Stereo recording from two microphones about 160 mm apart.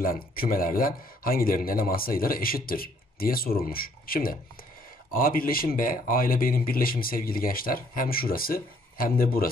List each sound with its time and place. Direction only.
0.0 s a man's voice: 65° left (ahead or behind)